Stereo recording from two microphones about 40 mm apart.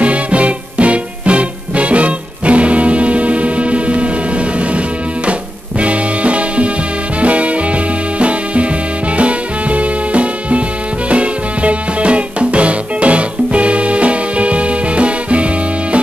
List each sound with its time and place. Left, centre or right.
0.0 s music: right